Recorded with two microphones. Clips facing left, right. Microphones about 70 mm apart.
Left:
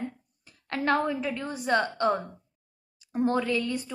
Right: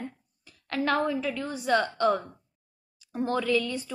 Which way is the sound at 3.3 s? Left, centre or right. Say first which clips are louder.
Right 1 dB; left.